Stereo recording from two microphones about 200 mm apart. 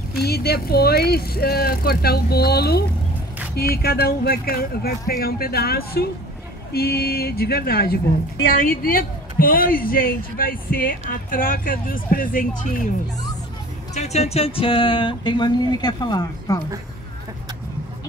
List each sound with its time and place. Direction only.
0.1 s a woman's voice: 50° left (ahead or behind)
13.9 s speech: 35° left (ahead or behind)